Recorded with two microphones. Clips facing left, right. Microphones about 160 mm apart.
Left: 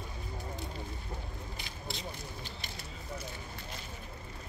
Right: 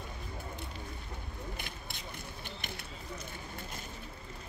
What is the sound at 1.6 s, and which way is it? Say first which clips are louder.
Vehicle: left 3 dB; 55° right (ahead or behind).